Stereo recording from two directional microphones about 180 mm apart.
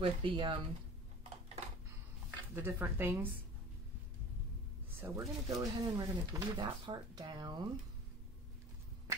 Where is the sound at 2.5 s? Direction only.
10° right (ahead or behind).